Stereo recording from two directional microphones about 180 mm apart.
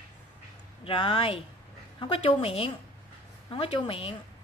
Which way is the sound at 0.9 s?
30° left (ahead or behind).